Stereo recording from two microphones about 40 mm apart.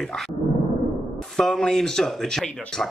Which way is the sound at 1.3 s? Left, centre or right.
Centre.